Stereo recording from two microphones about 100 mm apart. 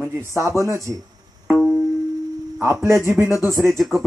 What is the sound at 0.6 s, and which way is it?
Speech, 30° right (ahead or behind).